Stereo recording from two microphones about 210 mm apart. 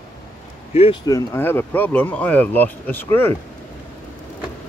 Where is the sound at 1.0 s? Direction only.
15° left (ahead or behind).